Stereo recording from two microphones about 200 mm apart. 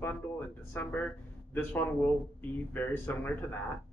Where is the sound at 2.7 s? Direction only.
10° left (ahead or behind).